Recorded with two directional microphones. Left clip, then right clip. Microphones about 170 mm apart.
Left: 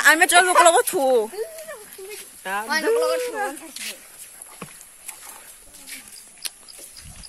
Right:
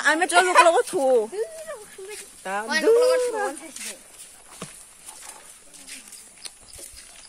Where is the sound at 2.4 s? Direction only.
65° right (ahead or behind); by 2.9 s 80° right.